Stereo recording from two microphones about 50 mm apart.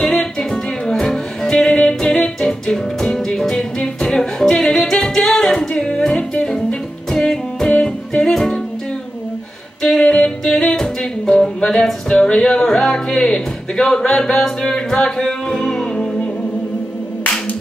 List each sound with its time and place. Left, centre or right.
0.0 s music: centre
9.8 s music: centre